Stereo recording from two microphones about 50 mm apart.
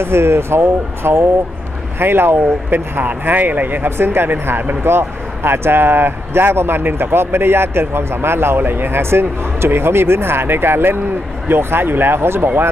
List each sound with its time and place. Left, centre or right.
0.0 s speech: right
2.0 s speech: right